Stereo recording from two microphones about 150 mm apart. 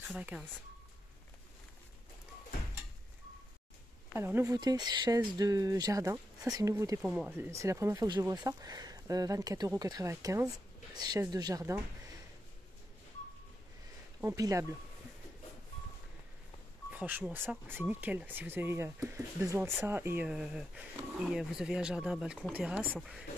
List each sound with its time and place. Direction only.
0.0 s speech: 5° right (ahead or behind)
4.1 s speech: 15° right (ahead or behind)
4.6 s speech: 30° right (ahead or behind)
7.0 s speech: 5° right (ahead or behind)
7.3 s speech: 20° right (ahead or behind)
14.2 s speech: 20° right (ahead or behind)
16.9 s speech: 10° right (ahead or behind)